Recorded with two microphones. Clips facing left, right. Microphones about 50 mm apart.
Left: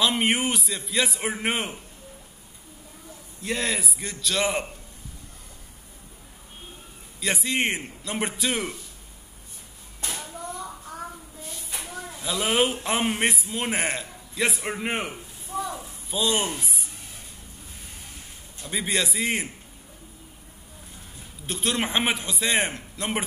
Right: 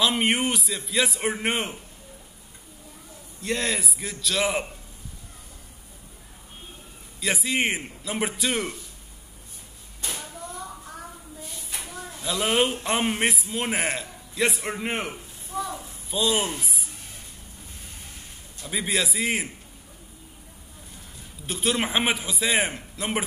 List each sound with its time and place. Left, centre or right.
0.0 s a man's voice: centre
3.4 s a man's voice: centre
7.2 s a man's voice: centre
11.7 s a sound: left
12.2 s a man's voice: centre
15.6 s a sound: centre
18.7 s a man's voice: centre
21.5 s a man's voice: centre